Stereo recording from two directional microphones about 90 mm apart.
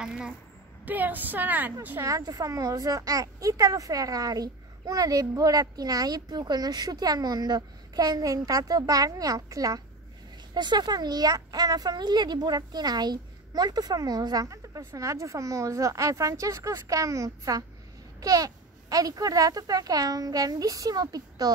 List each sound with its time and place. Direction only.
0.0 s a woman's voice: 5° right (ahead or behind)
0.8 s a woman's voice: 20° right (ahead or behind)
2.0 s a child's voice: 40° right (ahead or behind)
10.5 s a child's voice: 55° right (ahead or behind)